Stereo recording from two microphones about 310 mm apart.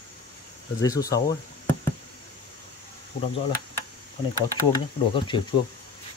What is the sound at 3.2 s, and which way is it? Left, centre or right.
Speech, centre.